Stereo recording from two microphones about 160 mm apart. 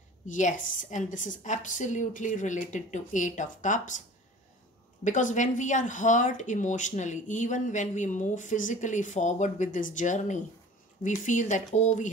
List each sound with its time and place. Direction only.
0.3 s speech: 55° left (ahead or behind)
5.0 s speech: 50° left (ahead or behind)